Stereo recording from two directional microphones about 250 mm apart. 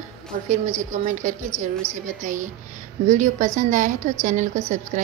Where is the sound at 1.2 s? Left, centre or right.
Right.